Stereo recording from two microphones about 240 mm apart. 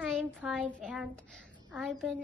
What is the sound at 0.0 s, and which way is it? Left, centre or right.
Child singing, centre.